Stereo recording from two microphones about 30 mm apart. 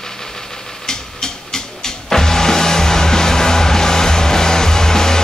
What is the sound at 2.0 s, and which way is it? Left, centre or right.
Music, centre.